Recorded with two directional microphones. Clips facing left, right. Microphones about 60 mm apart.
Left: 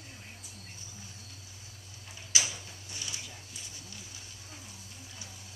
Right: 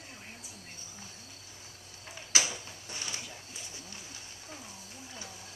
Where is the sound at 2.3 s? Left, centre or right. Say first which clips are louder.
Right 2 dB; right.